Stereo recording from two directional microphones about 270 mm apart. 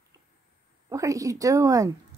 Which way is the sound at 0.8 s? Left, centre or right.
Centre.